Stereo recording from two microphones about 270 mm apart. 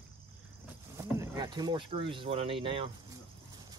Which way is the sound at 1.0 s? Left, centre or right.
Centre.